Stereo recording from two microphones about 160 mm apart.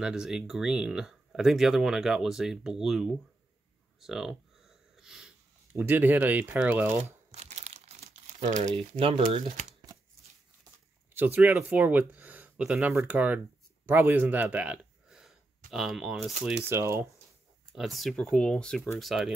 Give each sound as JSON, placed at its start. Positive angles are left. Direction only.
{"t": 0.0, "sound": "speech", "side_deg": -5}
{"t": 4.0, "sound": "sniff", "side_deg": 0}
{"t": 5.7, "sound": "speech", "side_deg": -15}
{"t": 7.2, "sound": "crumpling", "side_deg": -45}
{"t": 8.6, "sound": "speech", "side_deg": -30}
{"t": 11.1, "sound": "speech", "side_deg": -10}
{"t": 16.6, "sound": "speech", "side_deg": -15}
{"t": 17.7, "sound": "speech", "side_deg": 0}